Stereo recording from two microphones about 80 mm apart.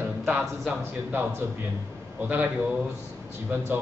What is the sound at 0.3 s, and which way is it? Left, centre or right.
Speech, centre.